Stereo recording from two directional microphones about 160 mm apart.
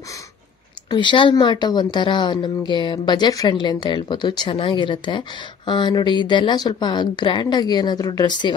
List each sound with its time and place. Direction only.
0.8 s speech: 30° left (ahead or behind)